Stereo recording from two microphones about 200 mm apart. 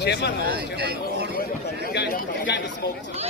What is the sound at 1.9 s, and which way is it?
Chatter, 50° left (ahead or behind).